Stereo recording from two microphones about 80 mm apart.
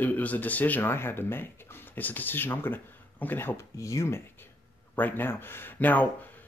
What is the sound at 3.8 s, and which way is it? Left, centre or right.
Speech, left.